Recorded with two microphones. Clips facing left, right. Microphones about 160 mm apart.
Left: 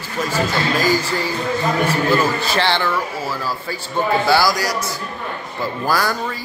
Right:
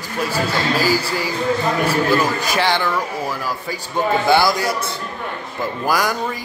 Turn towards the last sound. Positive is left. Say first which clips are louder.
# even
turn(degrees=-15)  # may be behind; listen again after turning